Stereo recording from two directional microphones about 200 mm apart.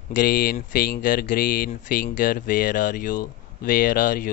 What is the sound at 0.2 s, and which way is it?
Speech, 45° left (ahead or behind).